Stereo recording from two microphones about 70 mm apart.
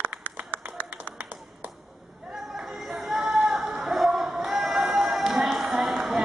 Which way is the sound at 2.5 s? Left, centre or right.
Centre.